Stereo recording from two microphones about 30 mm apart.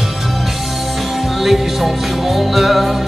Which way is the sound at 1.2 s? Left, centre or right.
Centre.